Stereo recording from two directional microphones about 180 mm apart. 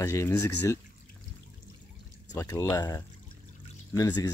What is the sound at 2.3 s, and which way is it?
Speech, 20° left (ahead or behind).